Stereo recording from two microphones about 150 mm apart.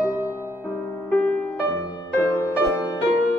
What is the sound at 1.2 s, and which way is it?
Music, 15° left (ahead or behind).